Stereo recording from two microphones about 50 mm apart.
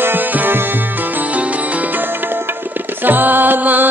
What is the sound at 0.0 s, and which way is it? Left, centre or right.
Music, right.